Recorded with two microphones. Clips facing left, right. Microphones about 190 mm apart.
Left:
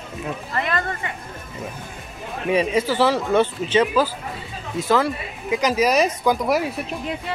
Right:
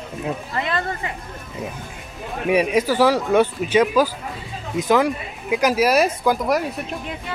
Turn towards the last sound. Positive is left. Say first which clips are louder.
# even
turn(degrees=0)  # may be behind; listen again after turning